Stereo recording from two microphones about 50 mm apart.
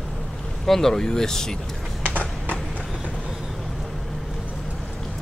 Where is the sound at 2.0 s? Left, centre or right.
Left.